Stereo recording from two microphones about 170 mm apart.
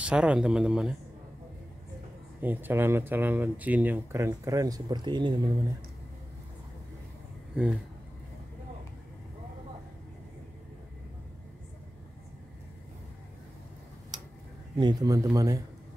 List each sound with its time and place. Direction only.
0.0 s speech: 5° right (ahead or behind)
2.4 s speech: 10° right (ahead or behind); by 5.4 s 25° right (ahead or behind)
7.5 s speech: 5° right (ahead or behind)
14.8 s speech: 25° right (ahead or behind)